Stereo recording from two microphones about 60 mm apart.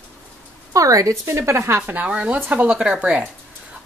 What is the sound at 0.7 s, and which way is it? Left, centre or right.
Speech, right.